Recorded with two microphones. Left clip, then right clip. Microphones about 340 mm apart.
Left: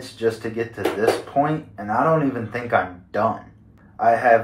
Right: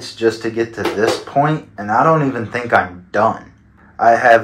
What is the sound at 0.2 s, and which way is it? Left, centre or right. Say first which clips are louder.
Speech: right 6 dB; right.